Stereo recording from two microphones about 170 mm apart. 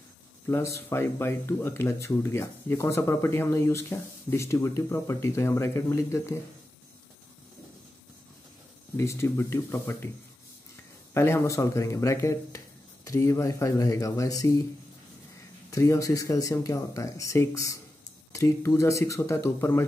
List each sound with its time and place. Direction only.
0.5 s speech: 15° left (ahead or behind)
8.9 s speech: 15° left (ahead or behind)
11.1 s speech: 15° left (ahead or behind)
15.7 s speech: 20° left (ahead or behind)